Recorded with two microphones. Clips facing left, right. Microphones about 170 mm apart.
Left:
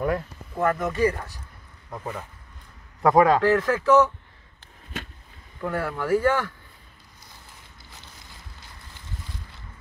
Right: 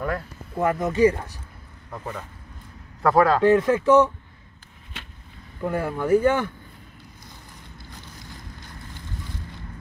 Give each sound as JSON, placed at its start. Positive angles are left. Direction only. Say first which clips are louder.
{"t": 0.6, "sound": "speech", "louder": "right 3 dB", "side_deg": -15}
{"t": 1.9, "sound": "a man's voice", "louder": "even", "side_deg": 10}
{"t": 3.4, "sound": "speech", "louder": "right 3 dB", "side_deg": -20}
{"t": 5.6, "sound": "speech", "louder": "right 2 dB", "side_deg": -20}